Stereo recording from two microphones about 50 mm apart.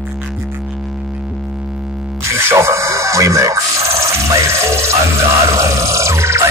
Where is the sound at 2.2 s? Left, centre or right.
Right.